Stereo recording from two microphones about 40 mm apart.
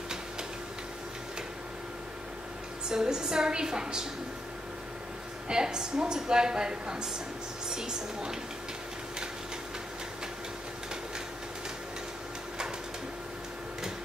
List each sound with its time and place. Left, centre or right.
2.9 s a woman's voice: centre
5.5 s a woman's voice: centre